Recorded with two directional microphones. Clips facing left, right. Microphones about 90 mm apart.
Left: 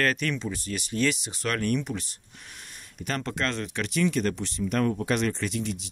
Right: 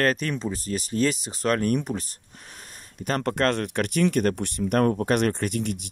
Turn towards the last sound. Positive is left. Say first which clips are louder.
# right 3 dB
turn(degrees=-50)  # may be behind; listen again after turning